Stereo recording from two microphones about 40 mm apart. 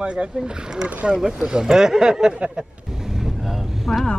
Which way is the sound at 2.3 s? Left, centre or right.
Right.